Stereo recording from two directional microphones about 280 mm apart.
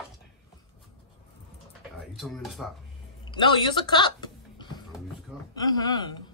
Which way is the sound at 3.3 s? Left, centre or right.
Centre.